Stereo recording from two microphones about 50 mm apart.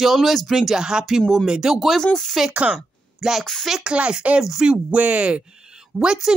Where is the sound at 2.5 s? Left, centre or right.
Right.